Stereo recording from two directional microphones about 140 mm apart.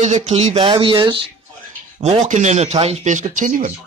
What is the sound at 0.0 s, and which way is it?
Speech, 55° right (ahead or behind).